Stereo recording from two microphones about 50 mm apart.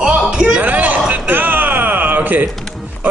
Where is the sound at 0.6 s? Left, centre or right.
Right.